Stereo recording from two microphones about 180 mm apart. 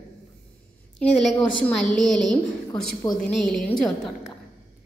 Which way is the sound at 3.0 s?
20° left (ahead or behind).